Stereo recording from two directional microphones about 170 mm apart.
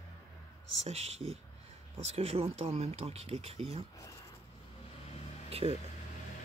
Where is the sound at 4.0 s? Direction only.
20° left (ahead or behind).